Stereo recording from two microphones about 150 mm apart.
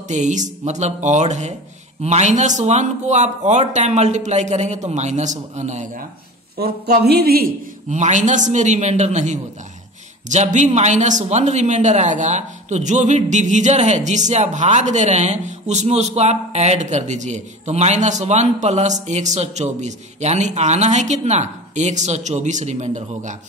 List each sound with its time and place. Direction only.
0.1 s a man's voice: 55° right (ahead or behind)
6.6 s speech: 90° right
7.9 s a man's voice: 55° right (ahead or behind)